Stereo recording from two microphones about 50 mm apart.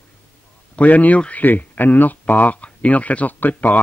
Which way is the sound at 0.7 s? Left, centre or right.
Left.